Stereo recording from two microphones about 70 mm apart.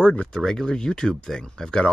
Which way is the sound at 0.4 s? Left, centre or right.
Centre.